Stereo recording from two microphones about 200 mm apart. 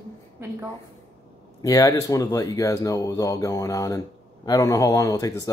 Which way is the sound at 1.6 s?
15° left (ahead or behind).